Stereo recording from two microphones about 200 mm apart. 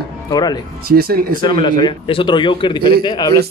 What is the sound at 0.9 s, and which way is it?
Speech, 50° right (ahead or behind).